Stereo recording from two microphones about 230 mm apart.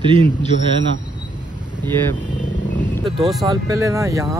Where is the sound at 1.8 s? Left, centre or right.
Centre.